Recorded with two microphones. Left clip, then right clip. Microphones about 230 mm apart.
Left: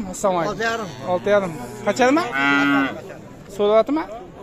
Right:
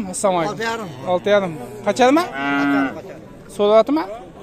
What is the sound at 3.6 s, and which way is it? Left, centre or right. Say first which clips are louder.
Speech: right 3 dB; centre.